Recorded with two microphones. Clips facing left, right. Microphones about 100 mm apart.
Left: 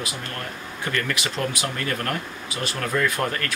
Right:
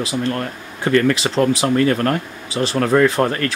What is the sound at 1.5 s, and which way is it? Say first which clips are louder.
Speech: right 12 dB; 30° right (ahead or behind).